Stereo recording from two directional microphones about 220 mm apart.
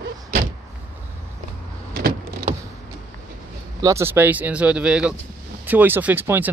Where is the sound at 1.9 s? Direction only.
45° right (ahead or behind).